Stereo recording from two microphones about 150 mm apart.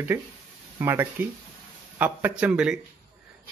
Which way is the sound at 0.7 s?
15° right (ahead or behind).